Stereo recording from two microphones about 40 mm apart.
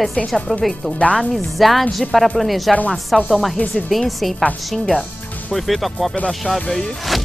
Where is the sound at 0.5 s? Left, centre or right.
Centre.